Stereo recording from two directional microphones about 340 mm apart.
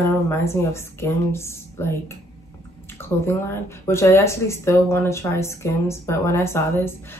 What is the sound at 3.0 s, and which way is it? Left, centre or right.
A woman's voice, centre.